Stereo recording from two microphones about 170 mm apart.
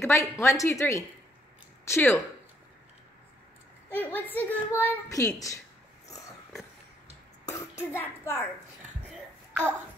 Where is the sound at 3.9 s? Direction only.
10° left (ahead or behind).